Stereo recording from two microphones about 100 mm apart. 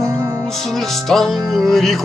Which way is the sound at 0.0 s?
30° right (ahead or behind).